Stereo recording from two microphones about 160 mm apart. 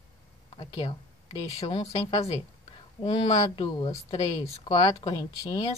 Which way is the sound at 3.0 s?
30° left (ahead or behind).